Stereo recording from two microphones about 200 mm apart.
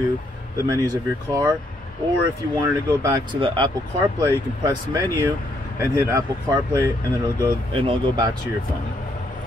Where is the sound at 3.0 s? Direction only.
20° right (ahead or behind).